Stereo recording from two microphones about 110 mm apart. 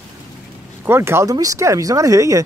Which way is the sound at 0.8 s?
20° right (ahead or behind).